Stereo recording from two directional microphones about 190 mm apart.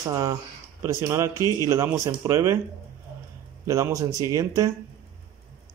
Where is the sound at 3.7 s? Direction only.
15° right (ahead or behind).